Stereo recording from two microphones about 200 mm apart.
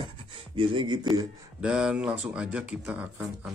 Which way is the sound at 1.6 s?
5° right (ahead or behind).